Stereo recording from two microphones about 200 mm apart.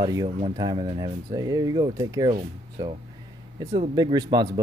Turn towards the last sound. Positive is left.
turn(degrees=-20)  # may be behind; listen again after turning